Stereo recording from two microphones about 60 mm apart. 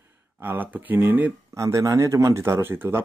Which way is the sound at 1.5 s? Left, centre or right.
Right.